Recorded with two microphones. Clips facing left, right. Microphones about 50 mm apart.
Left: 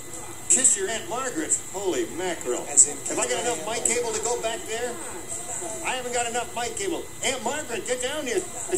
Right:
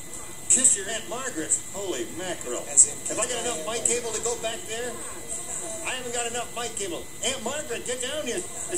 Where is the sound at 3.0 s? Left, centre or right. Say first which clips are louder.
Left 3 dB; left.